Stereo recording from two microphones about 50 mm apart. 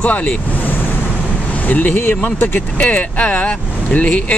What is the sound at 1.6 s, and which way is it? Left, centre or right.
Speech, left.